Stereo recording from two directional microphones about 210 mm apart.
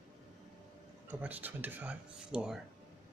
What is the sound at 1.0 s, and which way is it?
Speech, 10° right (ahead or behind).